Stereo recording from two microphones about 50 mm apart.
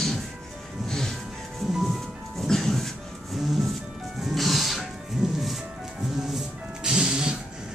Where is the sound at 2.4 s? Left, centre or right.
Centre.